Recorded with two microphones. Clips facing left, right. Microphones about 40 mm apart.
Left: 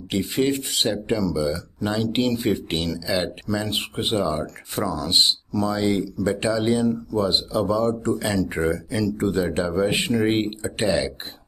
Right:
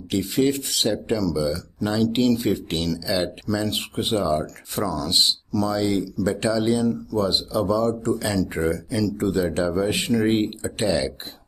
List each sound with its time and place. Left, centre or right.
0.1 s speech: left